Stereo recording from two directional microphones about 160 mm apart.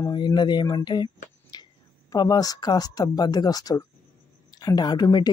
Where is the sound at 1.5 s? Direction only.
25° left (ahead or behind).